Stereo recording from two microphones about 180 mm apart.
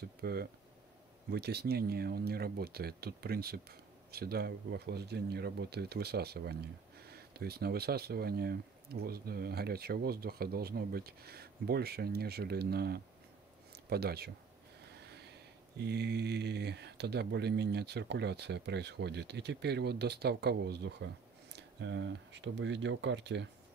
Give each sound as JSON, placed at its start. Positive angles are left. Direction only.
{"t": 0.2, "sound": "speech", "side_deg": -60}
{"t": 14.9, "sound": "a sound", "side_deg": -65}
{"t": 15.8, "sound": "speech", "side_deg": -65}